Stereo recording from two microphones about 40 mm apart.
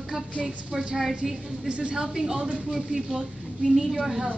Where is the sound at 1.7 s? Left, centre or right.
Right.